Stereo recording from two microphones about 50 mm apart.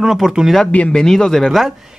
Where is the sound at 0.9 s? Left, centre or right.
Centre.